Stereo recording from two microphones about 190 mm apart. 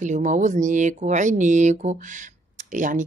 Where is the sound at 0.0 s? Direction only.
40° right (ahead or behind).